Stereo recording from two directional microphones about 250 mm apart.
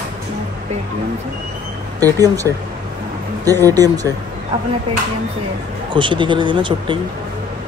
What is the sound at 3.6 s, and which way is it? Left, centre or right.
Speech, centre.